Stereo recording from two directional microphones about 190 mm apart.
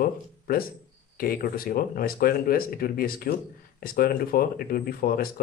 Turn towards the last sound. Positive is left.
turn(degrees=50)  # may be behind; listen again after turning